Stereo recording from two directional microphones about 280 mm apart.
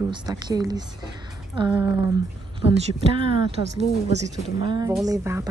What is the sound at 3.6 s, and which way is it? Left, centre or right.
Speech, left.